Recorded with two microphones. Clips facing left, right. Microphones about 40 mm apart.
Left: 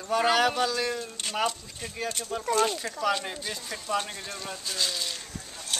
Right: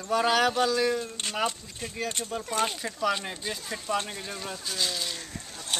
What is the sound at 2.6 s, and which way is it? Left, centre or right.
Speech, centre.